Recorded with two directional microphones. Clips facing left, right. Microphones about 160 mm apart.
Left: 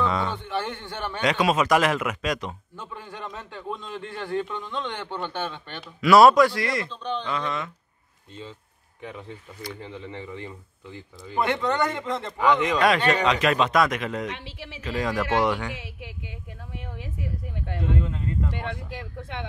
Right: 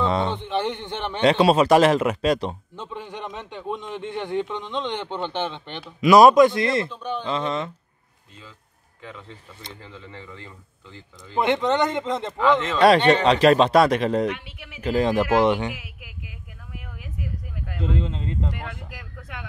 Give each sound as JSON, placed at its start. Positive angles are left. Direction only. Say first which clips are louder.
{"t": 0.0, "sound": "a man's voice", "louder": "right 3 dB", "side_deg": -25}
{"t": 2.7, "sound": "a man's voice", "louder": "right 4 dB", "side_deg": -20}
{"t": 6.9, "sound": "speech", "louder": "right 1 dB", "side_deg": -10}
{"t": 7.2, "sound": "a man's voice", "louder": "right 3 dB", "side_deg": -25}
{"t": 9.8, "sound": "a woman's voice", "louder": "left 4 dB", "side_deg": 20}
{"t": 11.3, "sound": "a man's voice", "louder": "right 3 dB", "side_deg": -20}
{"t": 12.4, "sound": "speech", "louder": "right 1 dB", "side_deg": 15}
{"t": 12.8, "sound": "speech", "louder": "right 8 dB", "side_deg": -30}
{"t": 14.3, "sound": "a woman's voice", "louder": "right 1 dB", "side_deg": 30}
{"t": 14.8, "sound": "a man's voice", "louder": "right 6 dB", "side_deg": -30}
{"t": 15.7, "sound": "a woman's voice", "louder": "left 2 dB", "side_deg": 30}
{"t": 17.8, "sound": "a man's voice", "louder": "right 1 dB", "side_deg": -25}
{"t": 18.5, "sound": "a woman's voice", "louder": "left 3 dB", "side_deg": 25}